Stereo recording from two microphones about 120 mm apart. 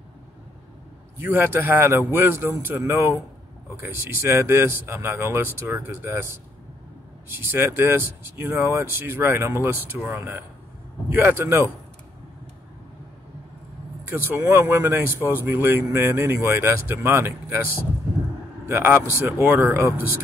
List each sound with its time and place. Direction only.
1.1 s speech: 15° right (ahead or behind)
14.0 s speech: 20° right (ahead or behind)
18.7 s speech: 20° right (ahead or behind)